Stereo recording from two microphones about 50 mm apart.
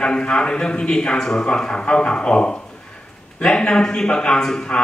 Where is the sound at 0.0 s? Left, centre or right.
Centre.